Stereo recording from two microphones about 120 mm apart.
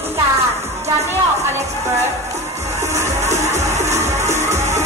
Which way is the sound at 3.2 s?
70° right (ahead or behind).